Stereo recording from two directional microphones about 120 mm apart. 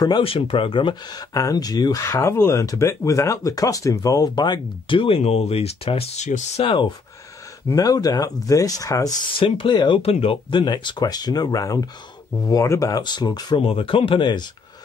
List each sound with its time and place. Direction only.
0.2 s speech: 50° left (ahead or behind)
1.3 s speech: 30° left (ahead or behind); by 6.2 s 55° left (ahead or behind)
6.2 s speech: 85° left
6.6 s speech: 40° left (ahead or behind)
7.7 s speech: 30° left (ahead or behind)
9.3 s speech: 45° left (ahead or behind)
10.0 s speech: 50° left (ahead or behind); by 13.6 s 35° left (ahead or behind)
13.7 s speech: 50° left (ahead or behind)